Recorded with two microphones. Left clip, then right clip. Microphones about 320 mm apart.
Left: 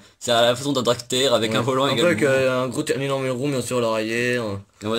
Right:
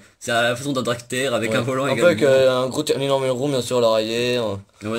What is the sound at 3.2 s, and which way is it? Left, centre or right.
Speech, right.